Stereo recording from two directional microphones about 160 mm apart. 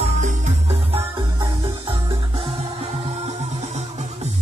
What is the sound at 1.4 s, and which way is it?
Music, 25° right (ahead or behind).